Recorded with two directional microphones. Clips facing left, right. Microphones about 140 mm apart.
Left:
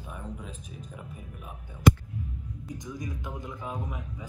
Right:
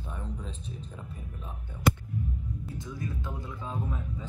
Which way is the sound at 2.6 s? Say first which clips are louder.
Left 3 dB; 15° left (ahead or behind).